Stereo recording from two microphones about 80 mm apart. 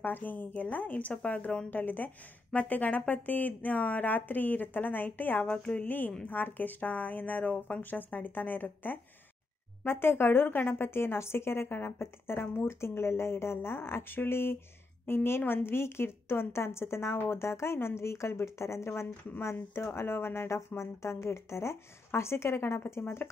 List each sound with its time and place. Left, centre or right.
0.0 s a woman's voice: left
5.5 s a woman's voice: centre; by 23.2 s left